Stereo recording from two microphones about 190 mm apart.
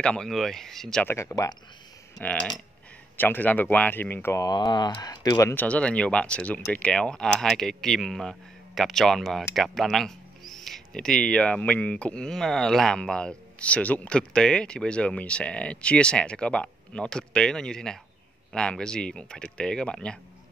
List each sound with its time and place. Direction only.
0.0 s speech: 5° left (ahead or behind)
1.1 s speech: 15° left (ahead or behind)
2.1 s speech: centre (ahead or behind)